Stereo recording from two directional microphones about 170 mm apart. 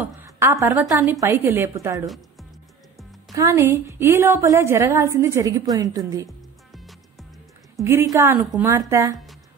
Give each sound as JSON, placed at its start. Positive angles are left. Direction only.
{"t": 0.0, "sound": "a woman's voice", "side_deg": -15}
{"t": 3.3, "sound": "a woman's voice", "side_deg": -15}
{"t": 6.2, "sound": "music", "side_deg": 0}
{"t": 7.8, "sound": "a woman's voice", "side_deg": -15}